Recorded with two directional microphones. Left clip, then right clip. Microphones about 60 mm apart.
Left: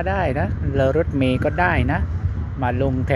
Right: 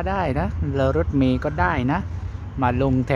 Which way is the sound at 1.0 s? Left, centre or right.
Centre.